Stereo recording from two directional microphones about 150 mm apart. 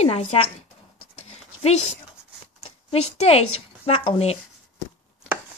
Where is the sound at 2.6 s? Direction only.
45° left (ahead or behind).